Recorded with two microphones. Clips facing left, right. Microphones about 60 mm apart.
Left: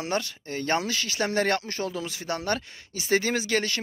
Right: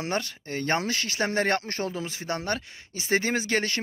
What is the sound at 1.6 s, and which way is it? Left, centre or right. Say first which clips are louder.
Speech: even; right.